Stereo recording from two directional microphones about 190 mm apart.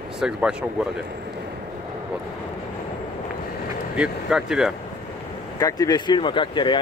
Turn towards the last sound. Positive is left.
turn(degrees=25)  # may be behind; listen again after turning